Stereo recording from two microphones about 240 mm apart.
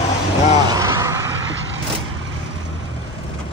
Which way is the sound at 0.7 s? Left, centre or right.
Centre.